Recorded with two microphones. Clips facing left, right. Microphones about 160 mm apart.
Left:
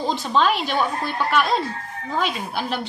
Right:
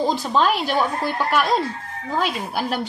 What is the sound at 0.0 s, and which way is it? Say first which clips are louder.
A woman's voice: right 1 dB; 10° right (ahead or behind).